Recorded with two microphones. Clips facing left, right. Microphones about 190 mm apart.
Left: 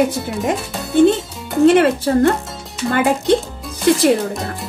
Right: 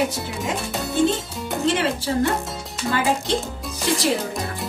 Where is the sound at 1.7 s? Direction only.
55° left (ahead or behind).